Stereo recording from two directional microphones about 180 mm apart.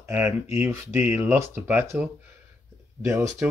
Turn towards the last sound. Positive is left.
turn(degrees=-15)  # may be behind; listen again after turning